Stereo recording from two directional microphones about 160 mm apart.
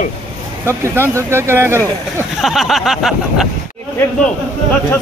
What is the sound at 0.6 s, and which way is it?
Speech, 15° right (ahead or behind).